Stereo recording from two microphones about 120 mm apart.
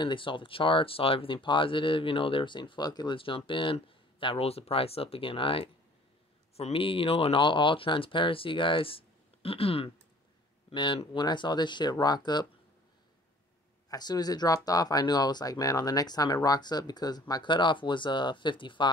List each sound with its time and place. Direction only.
0.0 s speech: 45° left (ahead or behind)
13.8 s speech: 35° left (ahead or behind)